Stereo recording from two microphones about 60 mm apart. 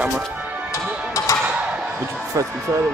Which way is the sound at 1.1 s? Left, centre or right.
Left.